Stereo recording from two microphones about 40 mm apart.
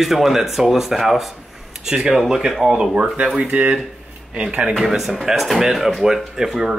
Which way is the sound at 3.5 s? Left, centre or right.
Right.